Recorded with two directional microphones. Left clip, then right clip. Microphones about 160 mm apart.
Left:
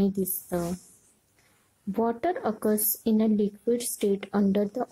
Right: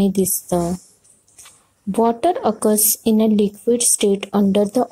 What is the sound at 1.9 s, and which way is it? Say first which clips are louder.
A woman's voice: right 10 dB; 20° right (ahead or behind).